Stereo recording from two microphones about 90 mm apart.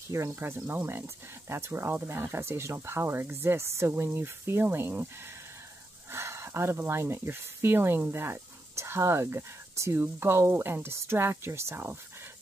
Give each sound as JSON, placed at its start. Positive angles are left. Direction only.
{"t": 0.1, "sound": "speech", "side_deg": -30}
{"t": 6.1, "sound": "speech", "side_deg": -30}